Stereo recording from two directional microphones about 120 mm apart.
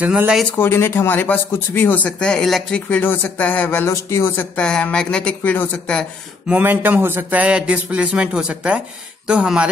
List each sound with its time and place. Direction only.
0.0 s speech: 10° right (ahead or behind)
0.5 s speech: 20° left (ahead or behind)
4.6 s speech: 10° left (ahead or behind)
6.5 s speech: 15° right (ahead or behind)